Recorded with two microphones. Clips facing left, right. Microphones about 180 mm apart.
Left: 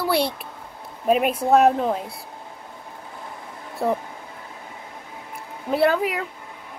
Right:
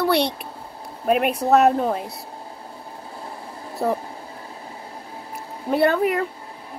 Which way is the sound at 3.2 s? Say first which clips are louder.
Right 3 dB; 30° right (ahead or behind).